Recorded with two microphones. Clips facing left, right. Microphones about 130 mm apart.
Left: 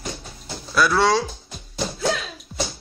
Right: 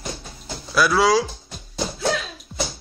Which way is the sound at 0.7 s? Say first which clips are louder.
Right 1 dB; 5° right (ahead or behind).